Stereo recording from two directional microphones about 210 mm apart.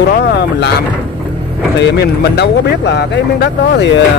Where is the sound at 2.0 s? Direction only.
50° left (ahead or behind).